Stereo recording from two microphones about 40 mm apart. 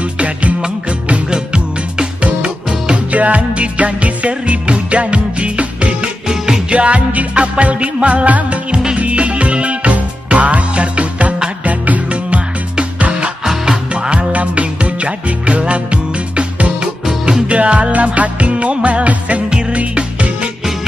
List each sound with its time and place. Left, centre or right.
0.0 s music: right
1.3 s music: centre
6.2 s music: centre
6.7 s music: right
13.4 s music: centre
13.9 s music: right
17.0 s music: centre